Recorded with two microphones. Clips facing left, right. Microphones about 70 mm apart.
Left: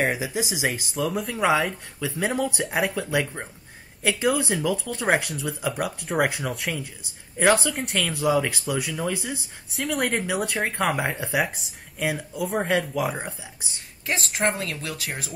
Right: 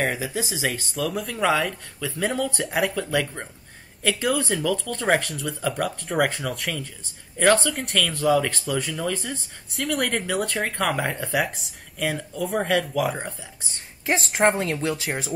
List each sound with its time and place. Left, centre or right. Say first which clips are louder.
0.0 s speech: left 1 dB; centre
0.9 s speech: left 1 dB; centre
1.7 s speech: left 1 dB; centre
2.6 s speech: right 3 dB; centre
2.9 s speech: even; centre
11.3 s speech: right 1 dB; centre
14.5 s speech: right 6 dB; right